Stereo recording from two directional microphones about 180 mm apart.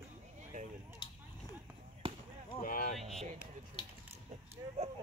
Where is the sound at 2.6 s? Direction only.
50° left (ahead or behind).